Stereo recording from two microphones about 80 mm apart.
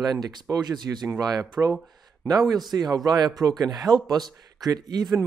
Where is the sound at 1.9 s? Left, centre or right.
Right.